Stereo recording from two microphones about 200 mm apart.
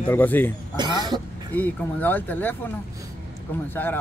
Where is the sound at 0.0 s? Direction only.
10° left (ahead or behind).